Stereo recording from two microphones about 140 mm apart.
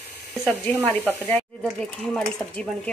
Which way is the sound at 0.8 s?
15° left (ahead or behind).